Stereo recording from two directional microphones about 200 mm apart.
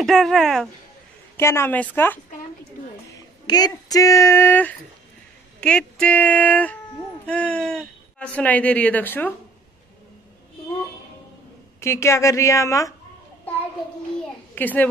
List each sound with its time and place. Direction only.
0.0 s speech: centre (ahead or behind)
1.3 s speech: 10° left (ahead or behind)
3.2 s speech: 20° left (ahead or behind)
11.8 s speech: 15° left (ahead or behind)
14.5 s a child's voice: 10° left (ahead or behind)